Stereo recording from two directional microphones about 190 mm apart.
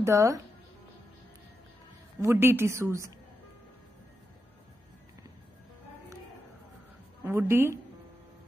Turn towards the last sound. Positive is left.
turn(degrees=-15)  # may be behind; listen again after turning